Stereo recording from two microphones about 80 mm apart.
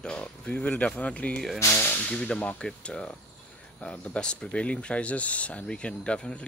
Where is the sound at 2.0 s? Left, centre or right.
Centre.